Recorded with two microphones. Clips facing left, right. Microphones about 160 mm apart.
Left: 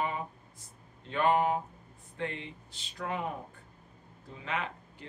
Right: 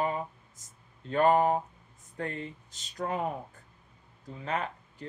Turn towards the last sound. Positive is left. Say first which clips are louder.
# right 2 dB
turn(degrees=-40)  # may be behind; listen again after turning